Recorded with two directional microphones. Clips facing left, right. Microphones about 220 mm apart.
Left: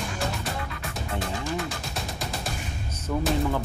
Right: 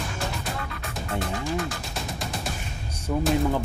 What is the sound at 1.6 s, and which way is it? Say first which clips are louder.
Music: right 1 dB; centre (ahead or behind).